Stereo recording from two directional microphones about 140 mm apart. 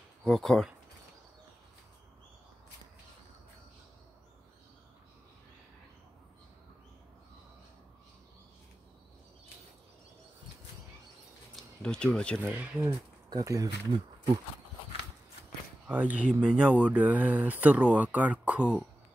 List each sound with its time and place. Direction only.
0.2 s speech: centre (ahead or behind)
11.5 s a sound: 5° left (ahead or behind)
12.4 s speech: 10° right (ahead or behind)
13.3 s speech: 25° right (ahead or behind)
15.9 s speech: 10° right (ahead or behind)